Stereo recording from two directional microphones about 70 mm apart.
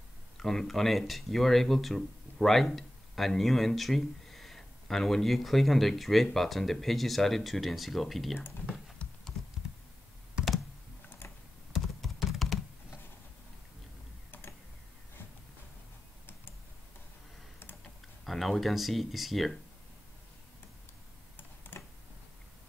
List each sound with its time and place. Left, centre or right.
0.4 s speech: centre
9.0 s a sound: centre
11.1 s tick-tock: left
11.7 s computer keyboard: centre
14.3 s computer keyboard: left
18.2 s speech: centre
21.4 s computer keyboard: left